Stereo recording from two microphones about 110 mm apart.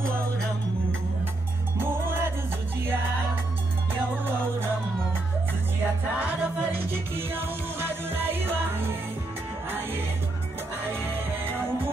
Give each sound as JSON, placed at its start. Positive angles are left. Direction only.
{"t": 1.8, "sound": "music", "side_deg": -20}
{"t": 6.1, "sound": "music", "side_deg": -15}